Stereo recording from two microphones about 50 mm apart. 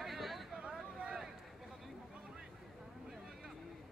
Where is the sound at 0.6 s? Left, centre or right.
Right.